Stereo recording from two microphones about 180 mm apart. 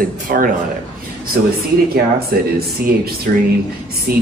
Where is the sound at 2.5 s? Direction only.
60° right (ahead or behind).